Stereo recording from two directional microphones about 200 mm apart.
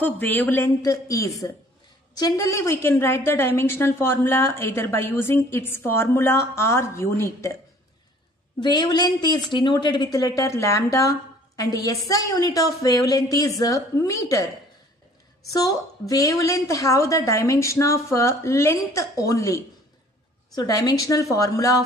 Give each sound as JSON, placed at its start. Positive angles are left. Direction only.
{"t": 0.0, "sound": "a woman's voice", "side_deg": 10}
{"t": 8.5, "sound": "a woman's voice", "side_deg": 20}
{"t": 15.5, "sound": "a woman's voice", "side_deg": 15}